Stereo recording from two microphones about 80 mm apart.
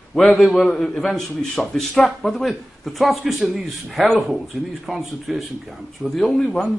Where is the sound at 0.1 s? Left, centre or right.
Centre.